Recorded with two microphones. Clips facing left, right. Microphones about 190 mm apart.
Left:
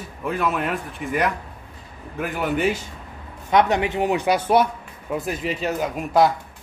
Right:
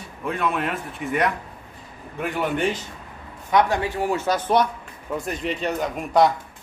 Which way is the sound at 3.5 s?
20° left (ahead or behind).